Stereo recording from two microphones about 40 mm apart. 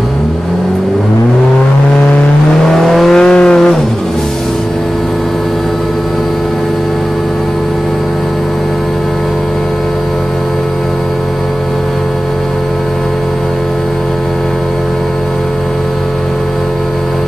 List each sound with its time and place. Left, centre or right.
2.7 s vehicle: centre
3.2 s vehicle: left